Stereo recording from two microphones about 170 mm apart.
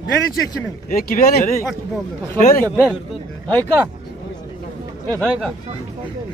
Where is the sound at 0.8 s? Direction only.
55° left (ahead or behind).